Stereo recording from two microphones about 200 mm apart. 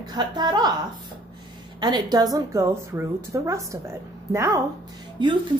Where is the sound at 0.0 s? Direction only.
20° right (ahead or behind).